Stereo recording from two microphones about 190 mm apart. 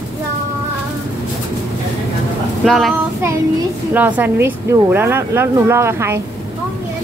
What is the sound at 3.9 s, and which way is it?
Speech, 10° right (ahead or behind).